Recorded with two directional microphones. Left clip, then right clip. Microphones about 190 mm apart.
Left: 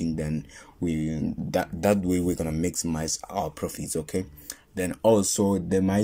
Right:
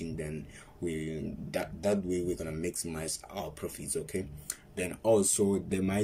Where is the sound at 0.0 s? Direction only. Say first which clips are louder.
Left 8 dB; 35° left (ahead or behind).